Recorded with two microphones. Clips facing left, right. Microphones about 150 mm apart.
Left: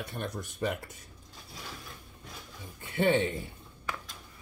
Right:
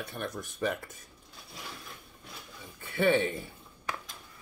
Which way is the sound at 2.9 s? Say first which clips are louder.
Even; 20° left (ahead or behind).